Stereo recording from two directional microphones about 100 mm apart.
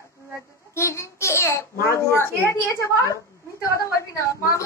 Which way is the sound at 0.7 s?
30° left (ahead or behind).